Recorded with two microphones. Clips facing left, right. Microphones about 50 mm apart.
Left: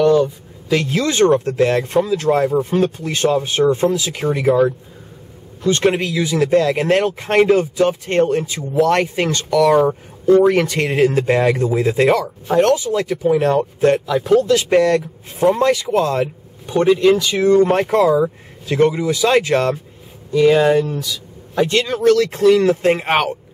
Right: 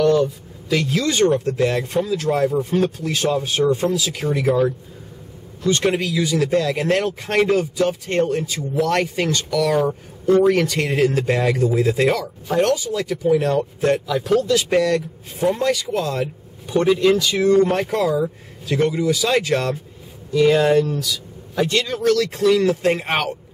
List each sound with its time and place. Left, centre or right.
0.0 s a sound: centre
0.8 s speech: left
1.3 s speech: left
1.6 s speech: left
3.5 s speech: left
4.0 s speech: centre
5.7 s speech: left
9.3 s speech: centre
10.4 s speech: centre
14.0 s speech: centre
14.5 s speech: left
16.6 s speech: centre
17.5 s speech: left
21.7 s speech: left